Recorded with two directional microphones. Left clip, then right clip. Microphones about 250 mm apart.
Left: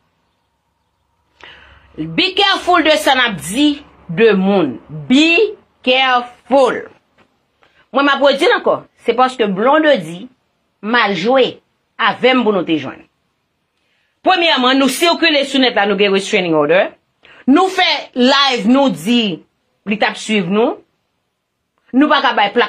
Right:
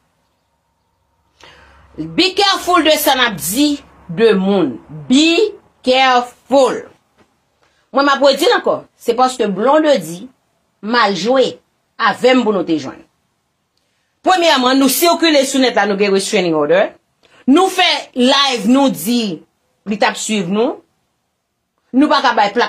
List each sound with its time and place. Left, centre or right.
2.0 s a woman's voice: centre
8.1 s a woman's voice: centre
14.4 s a woman's voice: centre
21.9 s a woman's voice: centre